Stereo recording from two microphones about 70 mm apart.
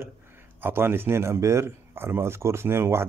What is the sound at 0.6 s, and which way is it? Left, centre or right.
Speech, right.